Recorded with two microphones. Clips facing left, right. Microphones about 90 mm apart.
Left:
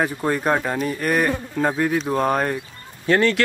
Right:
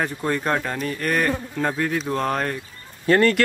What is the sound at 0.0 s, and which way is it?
A man's voice, 10° left (ahead or behind).